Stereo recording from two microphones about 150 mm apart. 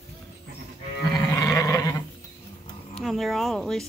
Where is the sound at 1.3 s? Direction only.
20° left (ahead or behind).